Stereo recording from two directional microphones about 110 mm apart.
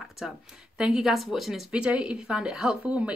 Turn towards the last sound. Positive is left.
turn(degrees=-10)  # may be behind; listen again after turning